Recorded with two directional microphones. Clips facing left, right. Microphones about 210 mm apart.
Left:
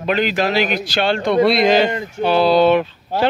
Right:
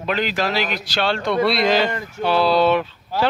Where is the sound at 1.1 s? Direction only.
20° left (ahead or behind).